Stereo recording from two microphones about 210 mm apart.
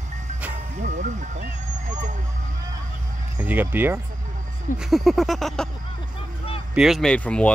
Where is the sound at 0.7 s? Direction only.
35° right (ahead or behind).